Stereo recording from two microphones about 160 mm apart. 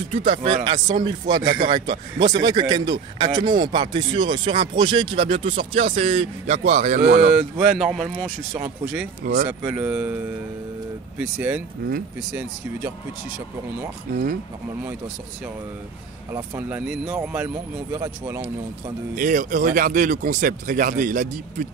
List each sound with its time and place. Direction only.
0.1 s a man's voice: 35° right (ahead or behind)
7.3 s speech: 5° right (ahead or behind)
8.2 s speech: 15° right (ahead or behind)
9.2 s speech: 70° right (ahead or behind)
9.5 s speech: 10° right (ahead or behind)
11.1 s speech: 10° right (ahead or behind)
16.3 s speech: 10° right (ahead or behind)
19.1 s speech: 55° right (ahead or behind)